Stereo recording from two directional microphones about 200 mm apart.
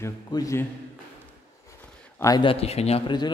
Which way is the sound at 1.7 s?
15° left (ahead or behind).